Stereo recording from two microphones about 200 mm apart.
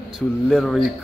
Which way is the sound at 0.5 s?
Centre (ahead or behind).